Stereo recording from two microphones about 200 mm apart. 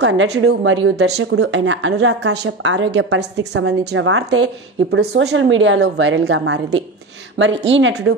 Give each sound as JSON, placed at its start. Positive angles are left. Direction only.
{"t": 0.0, "sound": "speech", "side_deg": -65}
{"t": 4.9, "sound": "a woman's voice", "side_deg": -60}